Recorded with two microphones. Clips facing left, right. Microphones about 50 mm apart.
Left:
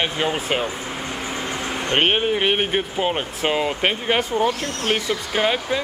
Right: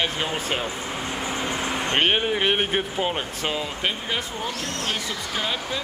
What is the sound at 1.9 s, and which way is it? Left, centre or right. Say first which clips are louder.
Speech: left 3 dB; centre.